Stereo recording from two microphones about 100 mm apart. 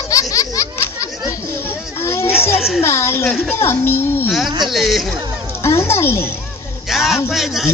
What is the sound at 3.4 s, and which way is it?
Speech, 25° left (ahead or behind).